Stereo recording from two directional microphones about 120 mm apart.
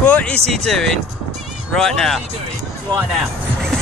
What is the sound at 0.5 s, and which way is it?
Speech, 5° left (ahead or behind).